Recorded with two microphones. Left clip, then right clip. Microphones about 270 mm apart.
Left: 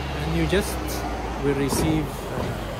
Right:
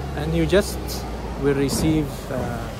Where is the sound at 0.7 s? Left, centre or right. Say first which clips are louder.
Left 2 dB; left.